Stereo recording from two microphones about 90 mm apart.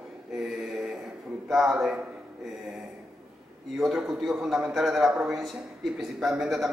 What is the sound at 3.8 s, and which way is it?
A man's voice, centre (ahead or behind).